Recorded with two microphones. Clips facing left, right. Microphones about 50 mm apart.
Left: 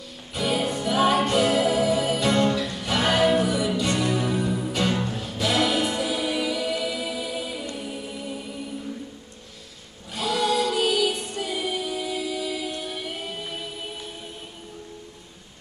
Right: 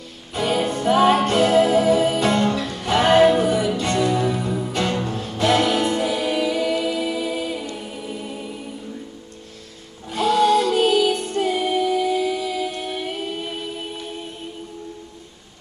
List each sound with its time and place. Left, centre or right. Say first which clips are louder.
0.3 s music: right 4 dB; right
4.1 s music: right 3 dB; right
5.0 s music: right 6 dB; right
10.1 s music: right 7 dB; right